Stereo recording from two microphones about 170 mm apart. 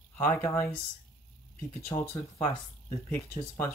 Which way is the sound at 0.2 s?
10° left (ahead or behind).